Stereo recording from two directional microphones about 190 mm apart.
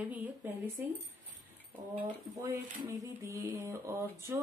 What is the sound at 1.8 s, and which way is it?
Speech, 20° right (ahead or behind).